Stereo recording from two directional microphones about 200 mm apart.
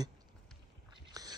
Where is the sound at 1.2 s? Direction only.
20° right (ahead or behind).